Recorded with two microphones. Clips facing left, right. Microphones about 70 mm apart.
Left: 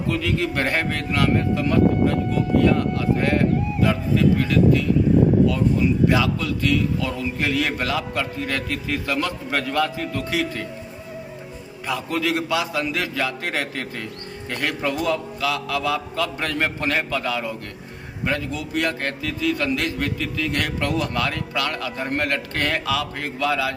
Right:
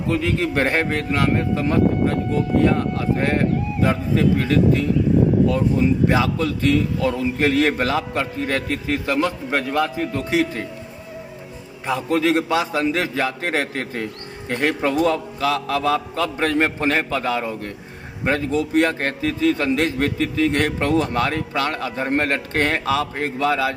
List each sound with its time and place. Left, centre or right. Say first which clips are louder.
0.0 s a man's voice: right 2 dB; right
11.9 s a man's voice: right 5 dB; right